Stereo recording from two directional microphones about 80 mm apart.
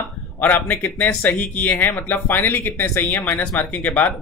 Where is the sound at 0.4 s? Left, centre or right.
Left.